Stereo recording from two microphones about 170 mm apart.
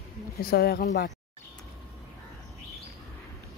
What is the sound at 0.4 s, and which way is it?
Speech, 65° left (ahead or behind).